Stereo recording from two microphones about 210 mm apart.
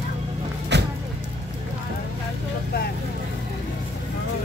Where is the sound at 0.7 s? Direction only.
55° right (ahead or behind).